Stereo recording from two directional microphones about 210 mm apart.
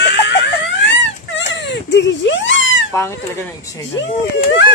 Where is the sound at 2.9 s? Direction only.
10° left (ahead or behind).